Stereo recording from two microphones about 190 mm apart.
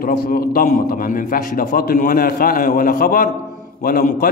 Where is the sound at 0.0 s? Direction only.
50° left (ahead or behind).